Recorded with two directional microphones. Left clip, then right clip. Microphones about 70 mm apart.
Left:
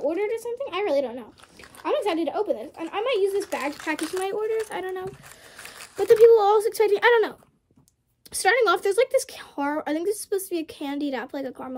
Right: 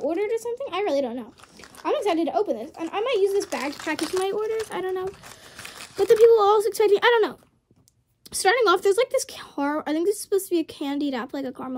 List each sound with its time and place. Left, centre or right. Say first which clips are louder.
0.1 s speech: right 1 dB; right
4.2 s a woman's voice: even; right